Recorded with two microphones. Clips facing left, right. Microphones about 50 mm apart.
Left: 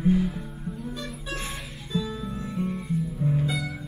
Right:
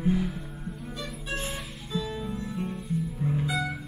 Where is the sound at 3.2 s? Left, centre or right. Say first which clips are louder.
Left 4 dB; centre.